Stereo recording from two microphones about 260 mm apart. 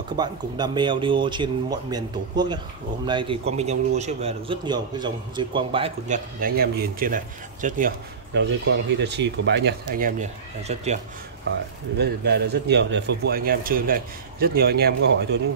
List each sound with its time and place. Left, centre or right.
0.1 s a man's voice: centre
12.0 s a man's voice: right